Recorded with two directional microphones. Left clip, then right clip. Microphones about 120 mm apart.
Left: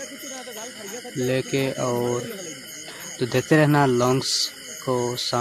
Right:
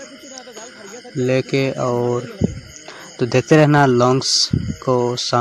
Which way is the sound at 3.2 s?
45° right (ahead or behind).